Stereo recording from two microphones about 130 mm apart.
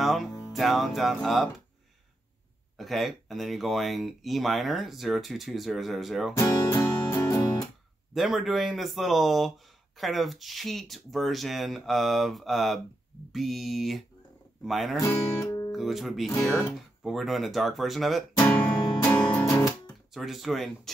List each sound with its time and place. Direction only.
0.0 s music: centre (ahead or behind)
0.5 s speech: centre (ahead or behind)
2.8 s speech: centre (ahead or behind)
7.1 s music: 20° left (ahead or behind)
7.3 s guitar: 35° left (ahead or behind)
8.1 s speech: centre (ahead or behind)
15.0 s speech: 25° left (ahead or behind)
15.7 s speech: centre (ahead or behind)
18.4 s music: 10° left (ahead or behind)
20.1 s speech: centre (ahead or behind)